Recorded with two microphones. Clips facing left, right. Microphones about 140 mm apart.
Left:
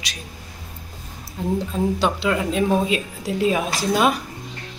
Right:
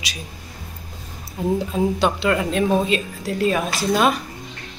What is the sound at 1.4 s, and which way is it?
Speech, 10° right (ahead or behind).